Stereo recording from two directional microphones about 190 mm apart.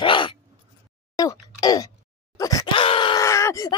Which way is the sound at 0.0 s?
25° left (ahead or behind).